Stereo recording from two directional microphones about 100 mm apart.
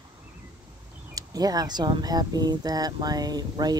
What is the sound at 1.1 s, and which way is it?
Speech, 40° right (ahead or behind).